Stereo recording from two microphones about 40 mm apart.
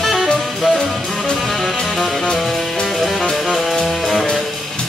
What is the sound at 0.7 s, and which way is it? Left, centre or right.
Music, left.